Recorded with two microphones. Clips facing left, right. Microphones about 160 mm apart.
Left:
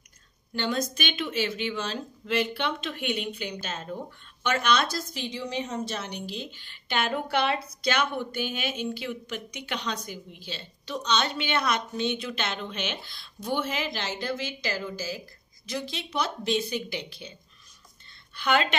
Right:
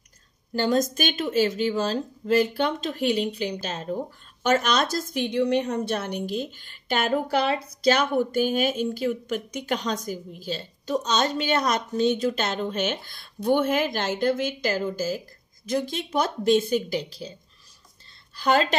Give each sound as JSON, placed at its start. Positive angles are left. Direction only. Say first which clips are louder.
{"t": 0.6, "sound": "a woman's voice", "louder": "right 6 dB", "side_deg": -40}
{"t": 18.3, "sound": "a woman's voice", "louder": "right 4 dB", "side_deg": -40}